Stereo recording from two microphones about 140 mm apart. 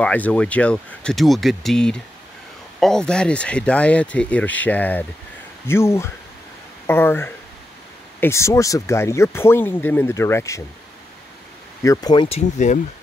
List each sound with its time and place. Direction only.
0.0 s speech: 10° left (ahead or behind)
11.8 s speech: 25° left (ahead or behind)
12.3 s speech: 55° left (ahead or behind)